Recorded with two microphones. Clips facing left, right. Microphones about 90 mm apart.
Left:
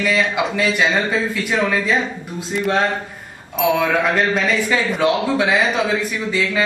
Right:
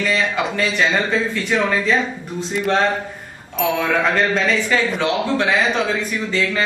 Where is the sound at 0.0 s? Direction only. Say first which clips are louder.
Left 1 dB; 10° left (ahead or behind).